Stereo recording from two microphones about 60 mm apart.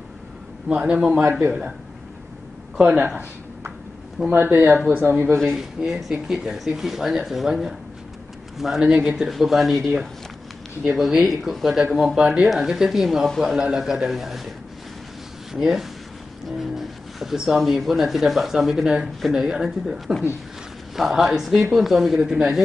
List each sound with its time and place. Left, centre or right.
0.7 s a man's voice: right
2.8 s speech: centre
4.3 s a man's voice: right
5.3 s speech: centre
5.6 s speech: centre
15.5 s speech: centre